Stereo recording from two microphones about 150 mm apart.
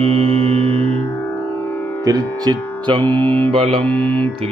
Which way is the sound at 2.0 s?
25° right (ahead or behind).